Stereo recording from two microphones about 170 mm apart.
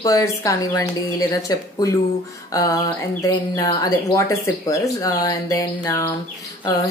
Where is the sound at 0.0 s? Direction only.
20° left (ahead or behind).